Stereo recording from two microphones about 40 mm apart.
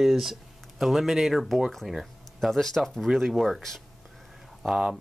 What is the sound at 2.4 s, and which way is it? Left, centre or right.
Speech, centre.